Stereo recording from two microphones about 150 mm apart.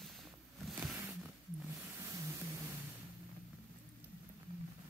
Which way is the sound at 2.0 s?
20° right (ahead or behind).